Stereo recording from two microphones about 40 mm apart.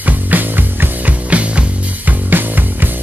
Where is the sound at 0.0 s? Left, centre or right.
Right.